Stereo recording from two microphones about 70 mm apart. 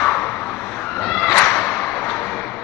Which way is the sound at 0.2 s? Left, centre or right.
Left.